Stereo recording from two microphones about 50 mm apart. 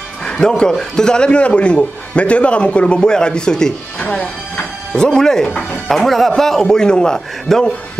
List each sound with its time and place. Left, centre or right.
0.4 s a man's voice: centre
4.9 s a man's voice: centre